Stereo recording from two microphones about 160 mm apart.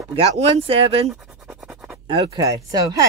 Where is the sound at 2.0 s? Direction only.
30° right (ahead or behind).